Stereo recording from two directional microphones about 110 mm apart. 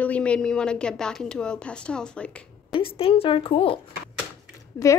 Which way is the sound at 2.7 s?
55° left (ahead or behind).